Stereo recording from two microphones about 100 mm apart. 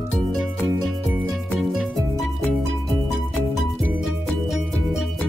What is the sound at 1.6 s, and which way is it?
Music, centre (ahead or behind).